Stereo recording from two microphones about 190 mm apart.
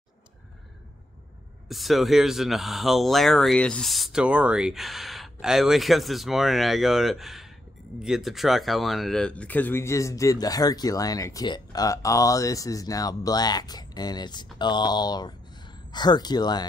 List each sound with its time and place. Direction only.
1.7 s speech: centre (ahead or behind); by 16.6 s 20° left (ahead or behind)